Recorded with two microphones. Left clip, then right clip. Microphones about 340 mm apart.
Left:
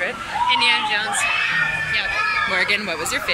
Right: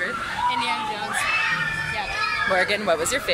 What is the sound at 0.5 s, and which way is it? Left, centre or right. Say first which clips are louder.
Speech: left 7 dB; centre.